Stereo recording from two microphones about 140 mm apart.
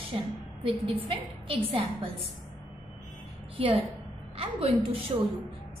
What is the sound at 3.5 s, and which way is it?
A woman's voice, 40° right (ahead or behind).